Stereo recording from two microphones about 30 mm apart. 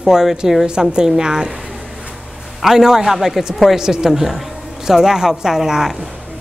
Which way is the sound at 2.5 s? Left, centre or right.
Centre.